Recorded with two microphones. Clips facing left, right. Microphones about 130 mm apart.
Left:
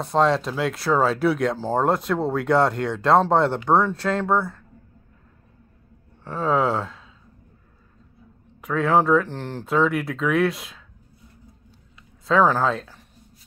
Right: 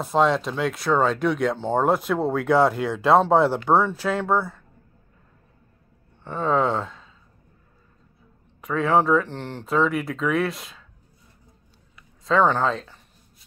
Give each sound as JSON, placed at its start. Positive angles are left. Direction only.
{"t": 0.0, "sound": "speech", "side_deg": 0}
{"t": 6.2, "sound": "speech", "side_deg": 0}
{"t": 8.5, "sound": "speech", "side_deg": 0}
{"t": 12.3, "sound": "speech", "side_deg": 0}